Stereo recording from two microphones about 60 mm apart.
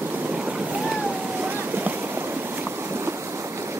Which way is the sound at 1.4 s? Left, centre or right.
Right.